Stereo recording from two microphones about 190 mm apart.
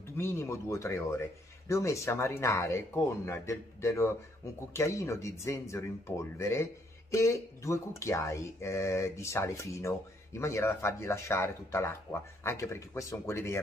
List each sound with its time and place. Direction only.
0.2 s speech: 15° left (ahead or behind)